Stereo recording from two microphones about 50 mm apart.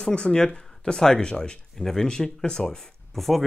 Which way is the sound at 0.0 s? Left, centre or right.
Centre.